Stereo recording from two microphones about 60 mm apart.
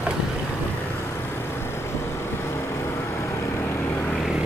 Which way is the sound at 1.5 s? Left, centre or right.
Left.